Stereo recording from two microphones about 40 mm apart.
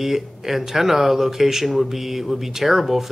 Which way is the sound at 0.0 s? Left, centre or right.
Centre.